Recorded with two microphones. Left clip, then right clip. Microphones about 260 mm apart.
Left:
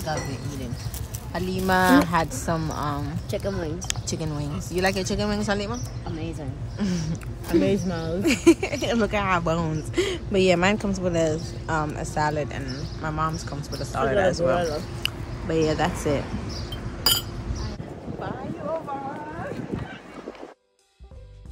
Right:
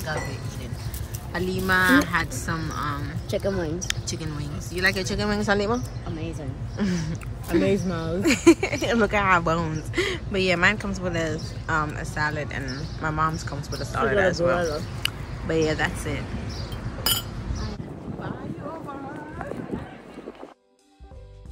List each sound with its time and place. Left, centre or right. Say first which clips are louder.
0.0 s speech: left 1 dB; centre
6.8 s speech: right 1 dB; centre
7.6 s speech: even; centre
17.1 s chink: left 3 dB; centre